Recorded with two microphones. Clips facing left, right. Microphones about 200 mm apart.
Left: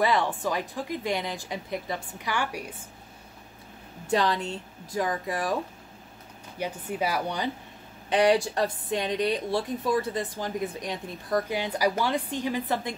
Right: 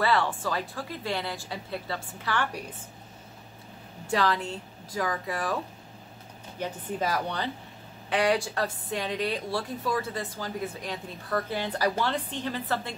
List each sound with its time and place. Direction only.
0.0 s a woman's voice: 15° left (ahead or behind)
4.1 s a woman's voice: 20° left (ahead or behind)
6.6 s a woman's voice: 10° left (ahead or behind)